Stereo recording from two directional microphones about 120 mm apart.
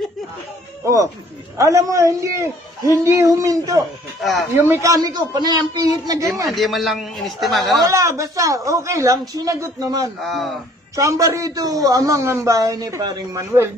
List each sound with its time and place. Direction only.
0.8 s a woman's voice: 25° right (ahead or behind)
4.2 s speech: centre (ahead or behind)
4.6 s a man's voice: 20° right (ahead or behind)
6.5 s speech: centre (ahead or behind)
7.9 s a woman's voice: 25° right (ahead or behind)
10.2 s speech: centre (ahead or behind)
11.0 s a woman's voice: 25° right (ahead or behind)